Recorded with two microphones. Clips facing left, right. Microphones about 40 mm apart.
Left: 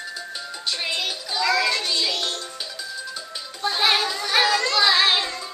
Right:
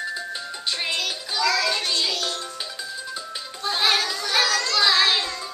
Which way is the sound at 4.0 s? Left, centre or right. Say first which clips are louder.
Left 2 dB; centre.